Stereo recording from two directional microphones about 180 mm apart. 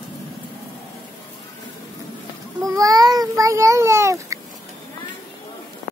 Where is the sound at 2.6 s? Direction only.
20° right (ahead or behind).